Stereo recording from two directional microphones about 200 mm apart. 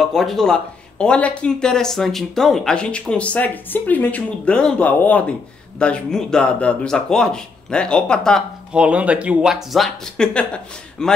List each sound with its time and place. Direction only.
0.0 s speech: centre (ahead or behind)